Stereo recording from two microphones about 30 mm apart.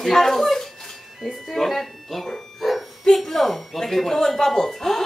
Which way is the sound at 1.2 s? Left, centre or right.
Centre.